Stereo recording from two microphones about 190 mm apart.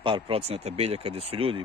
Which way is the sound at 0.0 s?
30° right (ahead or behind).